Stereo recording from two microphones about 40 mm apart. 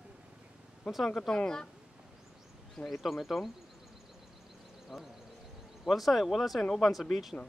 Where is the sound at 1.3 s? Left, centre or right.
Left.